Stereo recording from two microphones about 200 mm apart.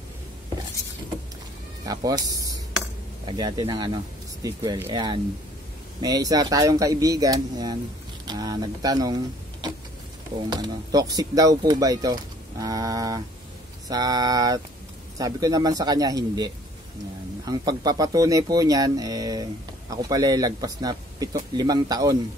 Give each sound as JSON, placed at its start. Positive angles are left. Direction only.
{"t": 1.9, "sound": "speech", "side_deg": -20}